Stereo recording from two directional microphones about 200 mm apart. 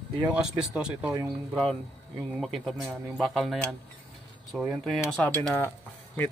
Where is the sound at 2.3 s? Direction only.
Centre (ahead or behind).